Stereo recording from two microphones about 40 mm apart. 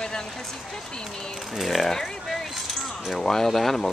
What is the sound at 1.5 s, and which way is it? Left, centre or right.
Speech, centre.